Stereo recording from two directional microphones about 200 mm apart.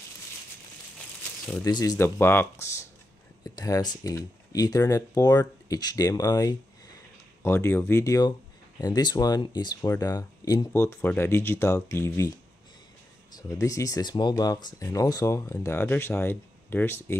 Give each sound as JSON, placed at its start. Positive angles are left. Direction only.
{"t": 1.6, "sound": "speech", "side_deg": 20}
{"t": 13.4, "sound": "speech", "side_deg": 15}